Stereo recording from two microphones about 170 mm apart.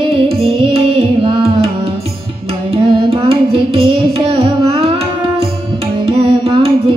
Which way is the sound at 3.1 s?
35° right (ahead or behind).